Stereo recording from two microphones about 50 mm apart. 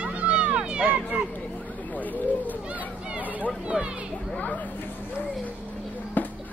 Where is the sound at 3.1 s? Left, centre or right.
Right.